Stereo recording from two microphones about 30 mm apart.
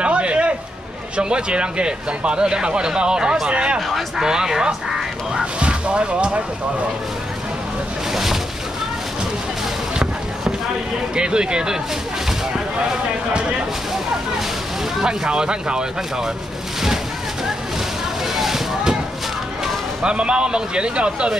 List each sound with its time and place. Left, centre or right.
0.0 s a sound: right
1.1 s speech: right
4.2 s speech: centre
5.6 s speech: right
8.1 s boat: centre
11.1 s speech: right
15.0 s speech: right
18.2 s a sound: centre
20.0 s speech: right